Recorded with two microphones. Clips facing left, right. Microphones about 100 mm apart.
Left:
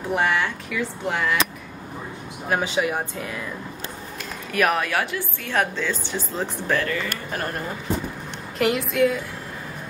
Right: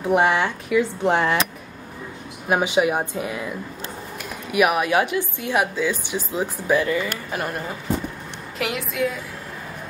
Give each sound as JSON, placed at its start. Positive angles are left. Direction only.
{"t": 0.1, "sound": "speech", "side_deg": -20}
{"t": 2.5, "sound": "a woman's voice", "side_deg": -15}
{"t": 8.5, "sound": "a woman's voice", "side_deg": 0}